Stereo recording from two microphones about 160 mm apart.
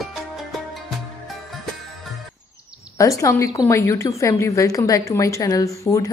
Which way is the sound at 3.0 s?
20° left (ahead or behind).